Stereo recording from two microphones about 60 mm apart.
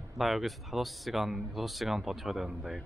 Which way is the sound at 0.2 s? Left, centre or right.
Centre.